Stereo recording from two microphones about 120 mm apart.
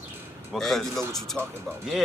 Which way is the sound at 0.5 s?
5° left (ahead or behind).